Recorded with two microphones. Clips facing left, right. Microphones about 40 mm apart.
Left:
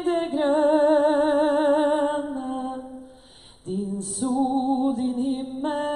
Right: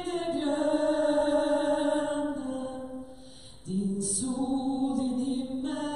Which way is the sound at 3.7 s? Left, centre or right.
Left.